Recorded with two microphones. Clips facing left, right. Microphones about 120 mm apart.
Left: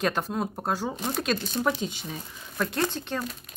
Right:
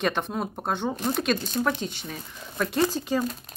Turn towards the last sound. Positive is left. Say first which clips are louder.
# right 5 dB
turn(degrees=-5)  # may be behind; listen again after turning